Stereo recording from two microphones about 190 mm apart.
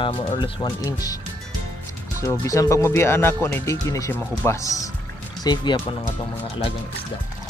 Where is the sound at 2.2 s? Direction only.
15° left (ahead or behind).